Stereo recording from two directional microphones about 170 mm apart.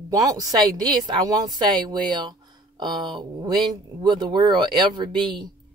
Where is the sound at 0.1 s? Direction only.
20° right (ahead or behind).